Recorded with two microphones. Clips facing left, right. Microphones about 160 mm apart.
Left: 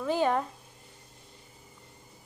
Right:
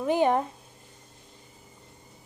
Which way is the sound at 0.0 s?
15° right (ahead or behind).